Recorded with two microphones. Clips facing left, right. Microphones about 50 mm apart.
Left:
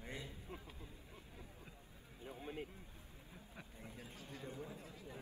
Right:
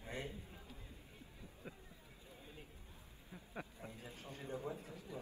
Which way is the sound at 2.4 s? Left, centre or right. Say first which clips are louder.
Left 11 dB; left.